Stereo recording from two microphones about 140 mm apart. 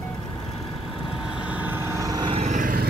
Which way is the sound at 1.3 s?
10° right (ahead or behind).